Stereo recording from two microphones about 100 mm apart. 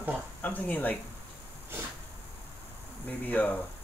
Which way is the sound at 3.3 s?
15° left (ahead or behind).